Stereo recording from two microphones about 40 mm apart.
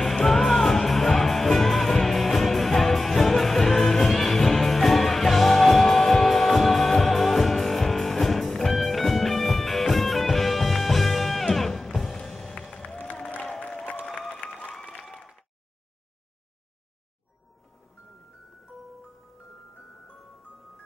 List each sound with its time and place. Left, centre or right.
0.0 s music: centre
13.4 s music: left
14.3 s applause: left